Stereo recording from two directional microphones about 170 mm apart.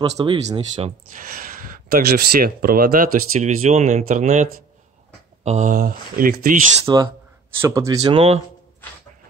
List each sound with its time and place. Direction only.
0.2 s speech: 30° right (ahead or behind)
1.1 s speech: 55° right (ahead or behind)
6.8 s speech: 25° right (ahead or behind)